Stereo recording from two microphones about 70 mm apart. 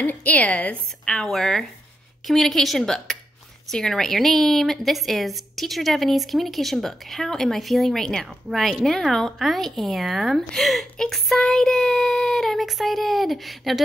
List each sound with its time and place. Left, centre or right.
0.0 s a woman's voice: left; by 13.8 s centre